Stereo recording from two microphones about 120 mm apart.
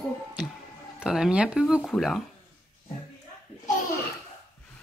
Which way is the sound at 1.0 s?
5° right (ahead or behind).